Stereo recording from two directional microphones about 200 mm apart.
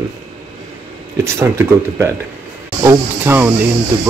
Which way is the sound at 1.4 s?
15° right (ahead or behind).